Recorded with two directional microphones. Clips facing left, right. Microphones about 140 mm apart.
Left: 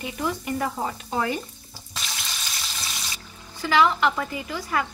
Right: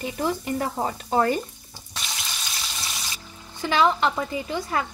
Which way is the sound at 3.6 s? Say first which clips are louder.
Even; 25° right (ahead or behind).